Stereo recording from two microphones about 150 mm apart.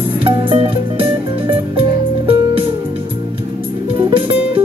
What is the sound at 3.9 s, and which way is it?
Music, 35° right (ahead or behind).